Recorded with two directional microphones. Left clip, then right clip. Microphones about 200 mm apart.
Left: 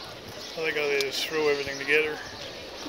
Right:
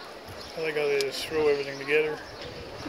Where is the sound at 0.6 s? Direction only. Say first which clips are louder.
Even; 5° right (ahead or behind).